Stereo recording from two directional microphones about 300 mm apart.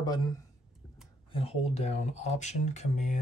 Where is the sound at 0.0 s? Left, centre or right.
Centre.